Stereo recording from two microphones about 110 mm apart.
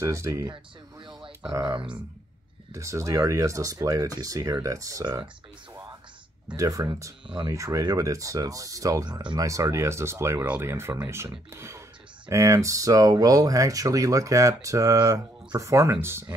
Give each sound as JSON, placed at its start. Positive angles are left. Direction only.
{"t": 0.0, "sound": "speech", "side_deg": -30}
{"t": 0.9, "sound": "a sound", "side_deg": -45}
{"t": 1.5, "sound": "speech", "side_deg": -30}
{"t": 6.5, "sound": "speech", "side_deg": -30}
{"t": 7.2, "sound": "speech", "side_deg": -40}
{"t": 7.5, "sound": "speech", "side_deg": -30}
{"t": 9.4, "sound": "speech", "side_deg": -30}